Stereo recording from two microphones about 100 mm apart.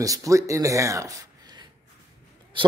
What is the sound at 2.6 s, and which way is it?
Speech, 55° right (ahead or behind).